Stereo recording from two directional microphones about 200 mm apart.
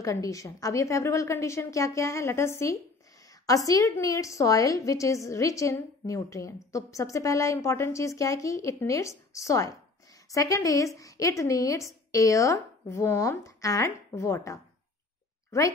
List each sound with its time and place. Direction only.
0.0 s a woman's voice: 15° left (ahead or behind)